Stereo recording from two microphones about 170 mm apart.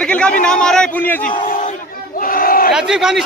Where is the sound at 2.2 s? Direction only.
55° left (ahead or behind).